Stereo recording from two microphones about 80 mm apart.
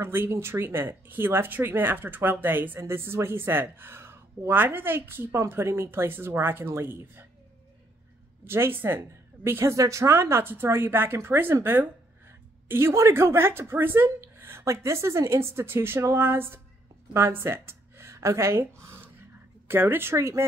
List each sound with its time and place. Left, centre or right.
0.0 s speech: right
8.5 s a woman's voice: right